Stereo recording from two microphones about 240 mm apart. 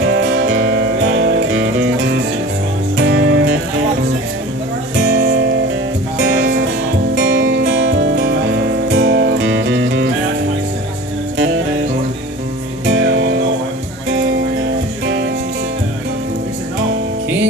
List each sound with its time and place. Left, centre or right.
0.0 s music: right
4.9 s music: right
12.8 s music: right